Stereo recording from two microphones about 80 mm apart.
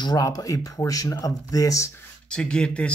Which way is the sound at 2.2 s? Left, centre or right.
Centre.